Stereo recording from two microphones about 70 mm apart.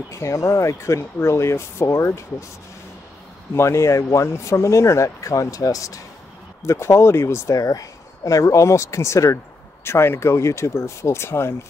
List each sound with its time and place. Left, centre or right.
0.1 s speech: left
3.5 s speech: left
6.6 s speech: left